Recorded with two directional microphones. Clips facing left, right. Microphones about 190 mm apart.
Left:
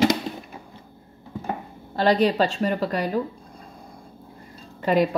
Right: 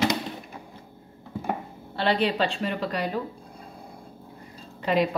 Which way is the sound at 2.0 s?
40° left (ahead or behind).